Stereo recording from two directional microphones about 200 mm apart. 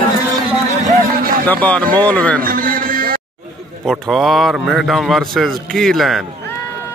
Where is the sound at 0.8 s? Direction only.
45° right (ahead or behind).